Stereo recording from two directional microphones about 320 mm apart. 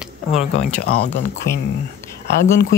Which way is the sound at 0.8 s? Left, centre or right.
Left.